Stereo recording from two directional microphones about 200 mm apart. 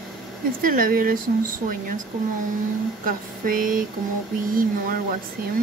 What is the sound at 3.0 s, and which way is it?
Speech, 45° right (ahead or behind).